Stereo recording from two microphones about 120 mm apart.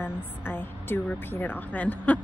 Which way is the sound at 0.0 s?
15° left (ahead or behind).